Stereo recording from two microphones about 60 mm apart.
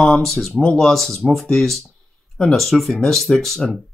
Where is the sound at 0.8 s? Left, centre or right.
Centre.